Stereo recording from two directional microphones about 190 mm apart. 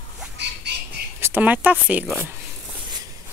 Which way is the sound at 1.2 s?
10° right (ahead or behind).